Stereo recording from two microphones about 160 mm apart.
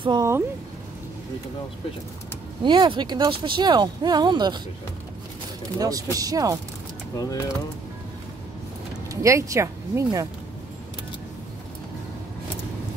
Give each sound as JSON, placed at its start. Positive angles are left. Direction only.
{"t": 0.0, "sound": "speech", "side_deg": -30}
{"t": 2.6, "sound": "speech", "side_deg": -30}
{"t": 5.8, "sound": "speech", "side_deg": -25}
{"t": 7.2, "sound": "speech", "side_deg": 20}
{"t": 9.1, "sound": "speech", "side_deg": -20}